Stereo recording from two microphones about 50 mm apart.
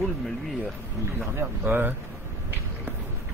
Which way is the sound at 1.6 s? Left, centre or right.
Right.